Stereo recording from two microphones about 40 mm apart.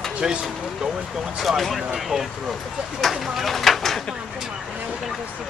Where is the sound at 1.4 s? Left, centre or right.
Centre.